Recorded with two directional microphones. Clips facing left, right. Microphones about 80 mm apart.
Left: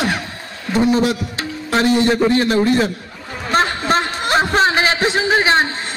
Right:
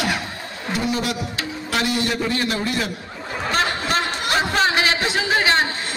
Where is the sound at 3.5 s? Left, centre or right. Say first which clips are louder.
Left 6 dB; left.